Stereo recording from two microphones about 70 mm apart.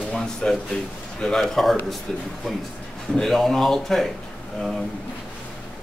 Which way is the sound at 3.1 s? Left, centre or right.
Centre.